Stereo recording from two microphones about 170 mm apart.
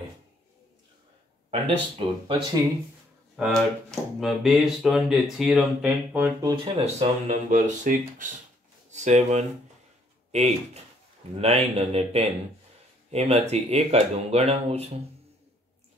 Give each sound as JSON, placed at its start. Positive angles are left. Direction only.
{"t": 1.5, "sound": "speech", "side_deg": -35}
{"t": 3.3, "sound": "speech", "side_deg": 0}
{"t": 6.4, "sound": "speech", "side_deg": -30}